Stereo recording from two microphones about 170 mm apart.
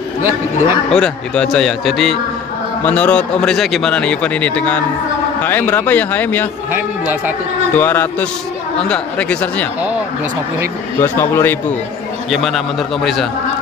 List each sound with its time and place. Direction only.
0.2 s speech: 15° right (ahead or behind)
0.8 s a man's voice: 5° left (ahead or behind)
6.7 s speech: 10° right (ahead or behind)
7.7 s speech: 10° left (ahead or behind)
11.0 s speech: 15° left (ahead or behind)
12.3 s a man's voice: centre (ahead or behind)